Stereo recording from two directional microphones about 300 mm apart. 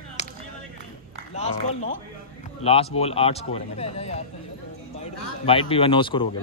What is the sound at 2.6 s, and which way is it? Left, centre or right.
Speech, centre.